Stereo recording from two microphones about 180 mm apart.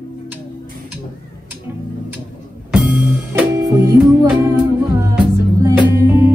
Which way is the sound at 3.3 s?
20° right (ahead or behind).